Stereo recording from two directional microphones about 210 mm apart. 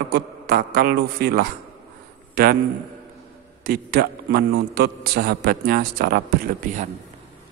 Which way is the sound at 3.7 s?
45° right (ahead or behind).